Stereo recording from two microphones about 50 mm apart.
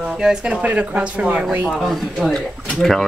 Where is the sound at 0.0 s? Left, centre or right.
Centre.